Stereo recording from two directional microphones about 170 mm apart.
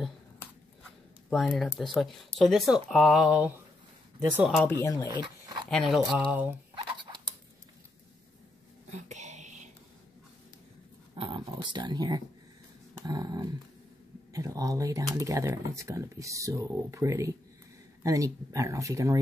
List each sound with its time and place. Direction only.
1.3 s speech: centre (ahead or behind)
4.6 s speech: 15° left (ahead or behind)
5.0 s dog: 25° right (ahead or behind)
5.7 s speech: centre (ahead or behind)
9.1 s a sound: 45° right (ahead or behind)
11.1 s speech: 30° right (ahead or behind)